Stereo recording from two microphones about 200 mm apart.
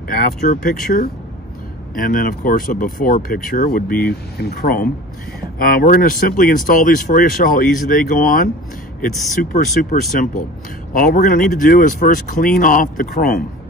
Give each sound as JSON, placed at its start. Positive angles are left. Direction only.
{"t": 0.1, "sound": "speech", "side_deg": 45}